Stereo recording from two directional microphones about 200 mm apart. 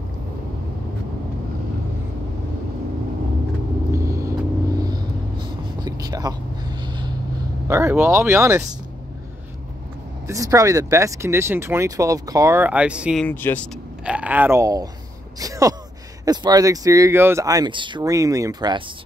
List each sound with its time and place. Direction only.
3.9 s vehicle: 15° right (ahead or behind)
7.6 s speech: 15° right (ahead or behind)
10.2 s speech: 15° right (ahead or behind)
13.3 s speech: 10° left (ahead or behind)
14.0 s speech: 5° right (ahead or behind)